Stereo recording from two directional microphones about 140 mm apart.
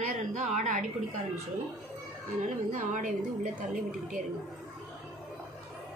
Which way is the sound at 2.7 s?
60° right (ahead or behind).